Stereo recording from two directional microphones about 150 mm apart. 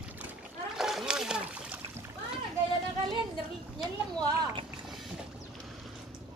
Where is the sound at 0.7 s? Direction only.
5° right (ahead or behind).